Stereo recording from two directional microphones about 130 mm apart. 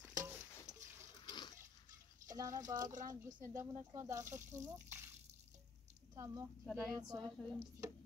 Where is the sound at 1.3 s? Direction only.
35° left (ahead or behind).